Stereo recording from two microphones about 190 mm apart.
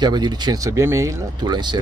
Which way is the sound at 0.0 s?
20° right (ahead or behind).